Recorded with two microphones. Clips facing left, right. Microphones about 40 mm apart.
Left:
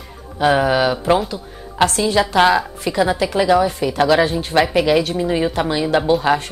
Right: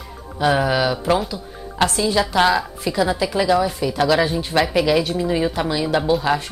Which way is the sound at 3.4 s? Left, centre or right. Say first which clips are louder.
Left 3 dB; left.